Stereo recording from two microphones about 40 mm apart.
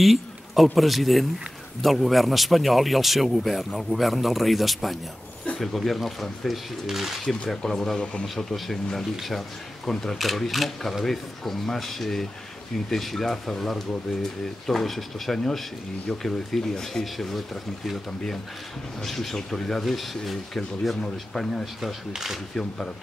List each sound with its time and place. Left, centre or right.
0.0 s a sound: centre
0.7 s speech: centre
7.2 s speech: centre
8.0 s speech: left
8.5 s speech: centre
19.0 s speech: centre
21.8 s speech: centre